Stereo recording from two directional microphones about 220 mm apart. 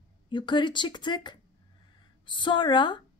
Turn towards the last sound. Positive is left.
turn(degrees=20)  # may be behind; listen again after turning